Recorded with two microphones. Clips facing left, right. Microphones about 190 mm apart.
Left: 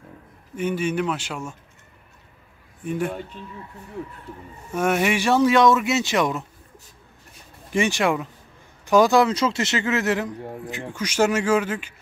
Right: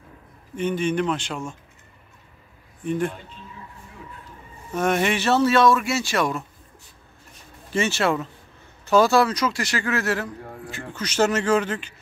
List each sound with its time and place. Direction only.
0.6 s speech: 10° left (ahead or behind)
2.8 s a man's voice: 10° left (ahead or behind)
4.7 s speech: 10° left (ahead or behind)
7.7 s speech: 15° left (ahead or behind)